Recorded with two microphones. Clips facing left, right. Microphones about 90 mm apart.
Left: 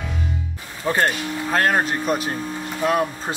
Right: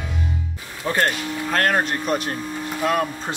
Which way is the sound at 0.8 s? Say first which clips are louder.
Left 1 dB; 15° left (ahead or behind).